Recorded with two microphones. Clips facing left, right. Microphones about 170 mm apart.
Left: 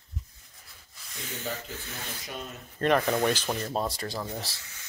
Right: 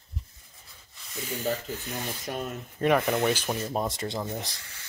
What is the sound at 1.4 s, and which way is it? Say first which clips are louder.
Speech: right 6 dB; 40° right (ahead or behind).